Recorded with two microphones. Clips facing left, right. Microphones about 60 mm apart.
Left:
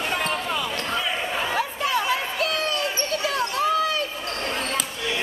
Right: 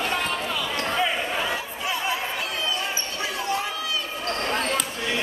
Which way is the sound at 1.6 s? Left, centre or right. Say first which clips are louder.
Left 5 dB; left.